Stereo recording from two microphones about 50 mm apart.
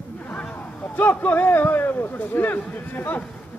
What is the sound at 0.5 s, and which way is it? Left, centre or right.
A man's voice, left.